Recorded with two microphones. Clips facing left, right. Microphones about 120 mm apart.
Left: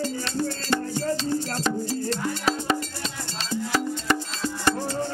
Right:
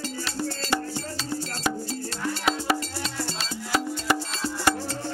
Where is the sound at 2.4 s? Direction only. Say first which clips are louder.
Right 3 dB; 5° right (ahead or behind).